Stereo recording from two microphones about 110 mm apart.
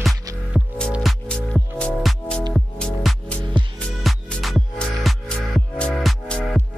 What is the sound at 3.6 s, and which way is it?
Music, 45° right (ahead or behind).